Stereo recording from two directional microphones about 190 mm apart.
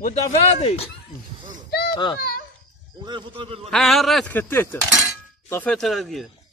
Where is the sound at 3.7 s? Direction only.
Centre (ahead or behind).